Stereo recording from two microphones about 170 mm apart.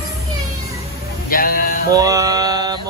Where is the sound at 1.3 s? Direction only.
55° left (ahead or behind).